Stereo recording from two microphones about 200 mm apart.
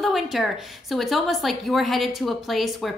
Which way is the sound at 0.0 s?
Centre (ahead or behind).